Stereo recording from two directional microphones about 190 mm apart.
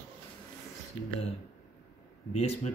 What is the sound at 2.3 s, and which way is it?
Speech, 35° left (ahead or behind).